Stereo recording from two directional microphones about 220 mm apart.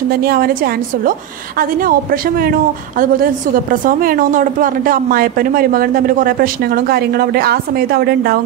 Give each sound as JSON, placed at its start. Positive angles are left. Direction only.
{"t": 0.2, "sound": "a woman's voice", "side_deg": -45}